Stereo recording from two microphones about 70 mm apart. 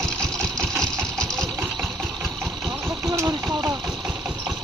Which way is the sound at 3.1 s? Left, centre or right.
Right.